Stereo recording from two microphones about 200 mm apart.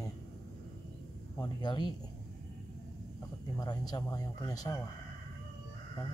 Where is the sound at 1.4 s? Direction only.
20° left (ahead or behind).